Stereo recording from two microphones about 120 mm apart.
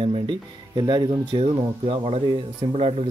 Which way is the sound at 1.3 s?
50° right (ahead or behind).